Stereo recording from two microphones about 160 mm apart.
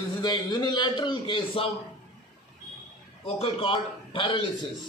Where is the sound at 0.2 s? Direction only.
25° left (ahead or behind).